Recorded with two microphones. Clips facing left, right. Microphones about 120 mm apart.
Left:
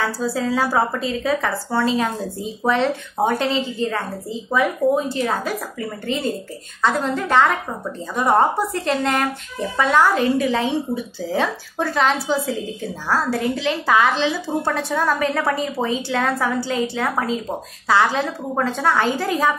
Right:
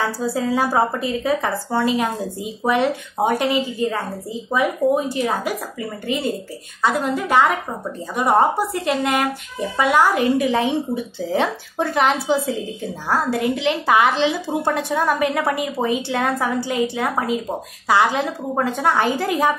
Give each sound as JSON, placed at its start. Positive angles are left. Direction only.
{"t": 0.0, "sound": "speech", "side_deg": -20}